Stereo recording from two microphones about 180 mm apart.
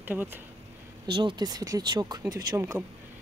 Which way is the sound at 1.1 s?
25° right (ahead or behind).